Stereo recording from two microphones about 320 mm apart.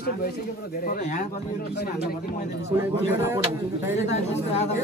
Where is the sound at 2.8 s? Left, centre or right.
Centre.